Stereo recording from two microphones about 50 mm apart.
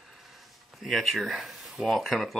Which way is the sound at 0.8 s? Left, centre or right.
Centre.